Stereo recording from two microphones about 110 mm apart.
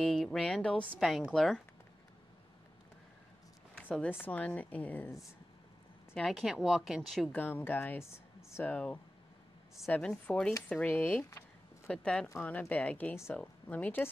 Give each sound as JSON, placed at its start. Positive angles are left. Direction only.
{"t": 0.0, "sound": "speech", "side_deg": 5}
{"t": 0.9, "sound": "a woman's voice", "side_deg": 0}
{"t": 4.1, "sound": "speech", "side_deg": 15}
{"t": 6.1, "sound": "a woman's voice", "side_deg": 0}
{"t": 7.3, "sound": "speech", "side_deg": 15}
{"t": 10.0, "sound": "speech", "side_deg": 10}
{"t": 11.2, "sound": "a sound", "side_deg": 25}
{"t": 11.9, "sound": "speech", "side_deg": 10}